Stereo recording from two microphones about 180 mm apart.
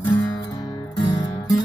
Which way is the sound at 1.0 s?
25° left (ahead or behind).